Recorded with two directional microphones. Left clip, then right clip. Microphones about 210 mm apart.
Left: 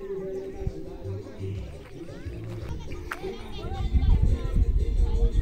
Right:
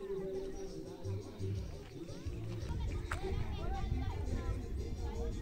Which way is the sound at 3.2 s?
35° right (ahead or behind).